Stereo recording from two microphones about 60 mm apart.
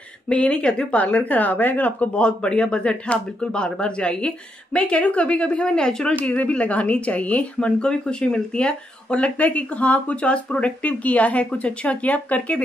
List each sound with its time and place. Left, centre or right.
0.3 s speech: centre
6.2 s speech: left